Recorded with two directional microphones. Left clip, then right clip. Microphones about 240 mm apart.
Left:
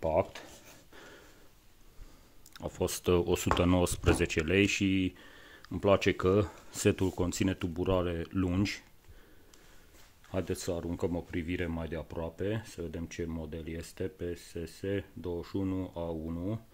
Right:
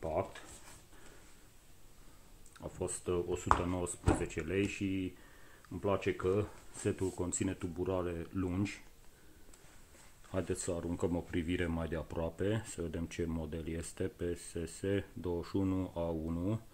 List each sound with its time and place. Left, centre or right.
0.0 s a sound: left
2.5 s speech: left
10.3 s speech: centre